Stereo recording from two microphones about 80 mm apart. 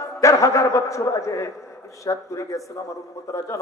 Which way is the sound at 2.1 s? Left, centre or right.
Left.